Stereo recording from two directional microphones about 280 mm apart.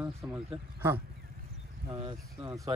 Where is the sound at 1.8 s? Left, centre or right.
Centre.